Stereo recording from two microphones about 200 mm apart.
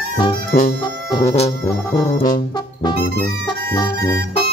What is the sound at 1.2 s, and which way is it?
Music, 30° left (ahead or behind).